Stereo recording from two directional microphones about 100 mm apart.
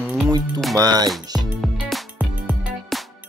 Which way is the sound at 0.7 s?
40° right (ahead or behind).